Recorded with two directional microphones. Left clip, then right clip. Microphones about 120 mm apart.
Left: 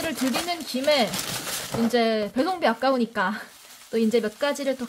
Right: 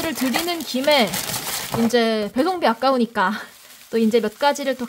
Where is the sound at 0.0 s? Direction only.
40° right (ahead or behind).